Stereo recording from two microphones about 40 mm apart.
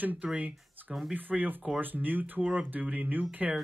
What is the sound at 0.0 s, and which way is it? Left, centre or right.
Speech, right.